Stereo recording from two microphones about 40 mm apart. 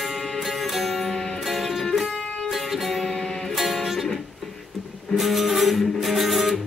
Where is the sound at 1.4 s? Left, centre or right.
Centre.